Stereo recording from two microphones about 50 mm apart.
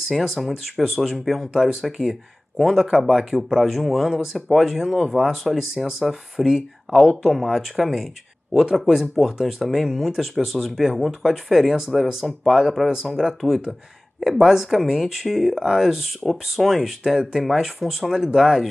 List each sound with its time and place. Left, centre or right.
0.1 s speech: centre